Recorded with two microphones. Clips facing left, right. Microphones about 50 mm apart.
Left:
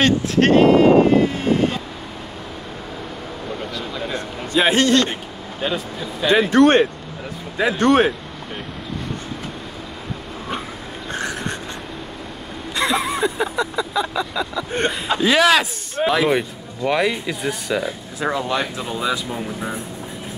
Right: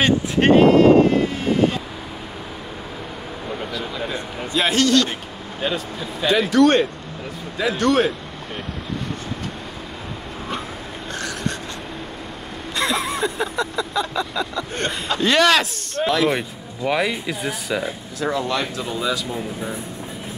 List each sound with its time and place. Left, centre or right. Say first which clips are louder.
0.0 s speech: left 1 dB; centre
0.7 s vehicle: even; centre
3.5 s a sound: right 2 dB; centre
4.6 s a man's voice: left 2 dB; left
5.6 s speech: left 1 dB; centre
6.2 s a man's voice: left 2 dB; left
11.1 s a sound: left 1 dB; left
12.7 s vehicle: left 2 dB; centre
14.9 s speech: left 1 dB; centre
16.3 s speech: left 4 dB; centre
18.2 s speech: left 1 dB; centre